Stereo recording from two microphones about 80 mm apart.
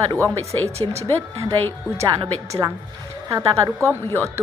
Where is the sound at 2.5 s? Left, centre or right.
Right.